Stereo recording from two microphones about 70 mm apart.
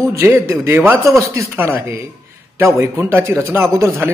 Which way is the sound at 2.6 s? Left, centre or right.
Right.